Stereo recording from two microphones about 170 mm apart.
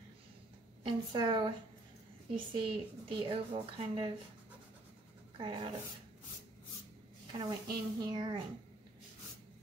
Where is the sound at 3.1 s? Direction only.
30° right (ahead or behind).